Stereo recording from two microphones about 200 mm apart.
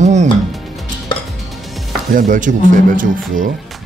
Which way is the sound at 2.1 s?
40° right (ahead or behind).